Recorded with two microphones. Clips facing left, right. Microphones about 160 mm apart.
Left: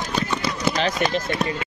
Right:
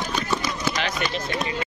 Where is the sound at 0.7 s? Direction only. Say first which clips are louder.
Left 5 dB; 35° left (ahead or behind).